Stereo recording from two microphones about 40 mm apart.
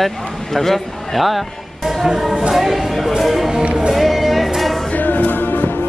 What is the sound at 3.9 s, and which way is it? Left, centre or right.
Music, centre.